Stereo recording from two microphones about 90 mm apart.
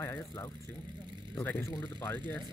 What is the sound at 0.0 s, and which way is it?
Speech, 30° left (ahead or behind).